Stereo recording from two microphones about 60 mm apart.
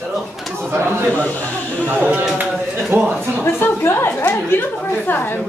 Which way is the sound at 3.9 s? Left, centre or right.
Left.